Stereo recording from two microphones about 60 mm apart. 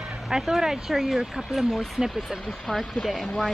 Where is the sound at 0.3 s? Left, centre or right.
Centre.